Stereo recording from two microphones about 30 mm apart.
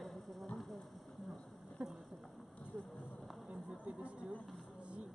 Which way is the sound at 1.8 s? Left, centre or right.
Right.